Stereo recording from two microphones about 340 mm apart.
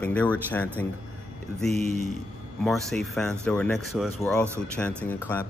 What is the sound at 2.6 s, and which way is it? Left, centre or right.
A man's voice, centre.